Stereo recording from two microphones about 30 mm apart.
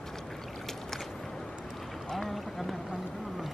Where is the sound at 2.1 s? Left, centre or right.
Centre.